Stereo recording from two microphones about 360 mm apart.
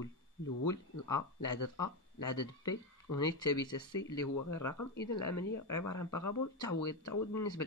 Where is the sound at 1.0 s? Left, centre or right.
Centre.